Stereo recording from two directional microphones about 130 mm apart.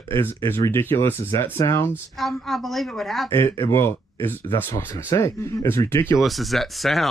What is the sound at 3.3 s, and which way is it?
Speech, 20° left (ahead or behind).